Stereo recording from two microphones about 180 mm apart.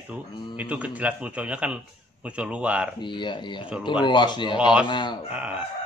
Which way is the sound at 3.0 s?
25° left (ahead or behind).